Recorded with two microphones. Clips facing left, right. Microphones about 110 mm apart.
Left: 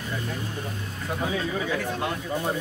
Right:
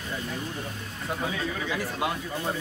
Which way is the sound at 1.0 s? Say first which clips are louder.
Left 1 dB; centre (ahead or behind).